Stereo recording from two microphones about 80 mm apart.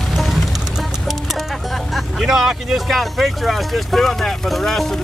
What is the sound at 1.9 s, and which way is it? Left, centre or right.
Speech, centre.